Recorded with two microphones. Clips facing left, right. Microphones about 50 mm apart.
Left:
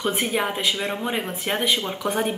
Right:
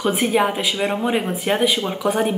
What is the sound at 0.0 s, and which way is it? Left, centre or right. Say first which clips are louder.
Speech: right 5 dB; centre.